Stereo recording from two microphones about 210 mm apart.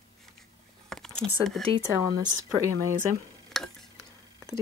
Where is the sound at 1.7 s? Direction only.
20° right (ahead or behind).